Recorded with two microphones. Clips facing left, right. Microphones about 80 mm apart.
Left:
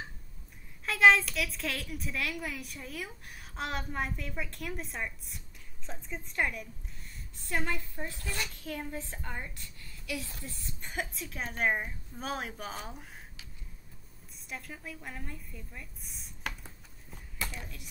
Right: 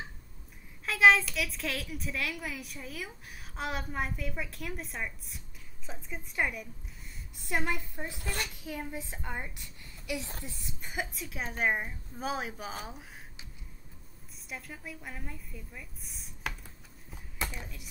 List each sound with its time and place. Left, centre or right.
0.8 s a woman's voice: centre
7.4 s a woman's voice: centre
10.8 s a woman's voice: centre
14.5 s a woman's voice: centre
17.4 s speech: centre